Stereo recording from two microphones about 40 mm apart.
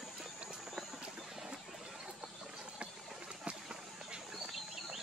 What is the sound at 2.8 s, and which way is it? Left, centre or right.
Run, right.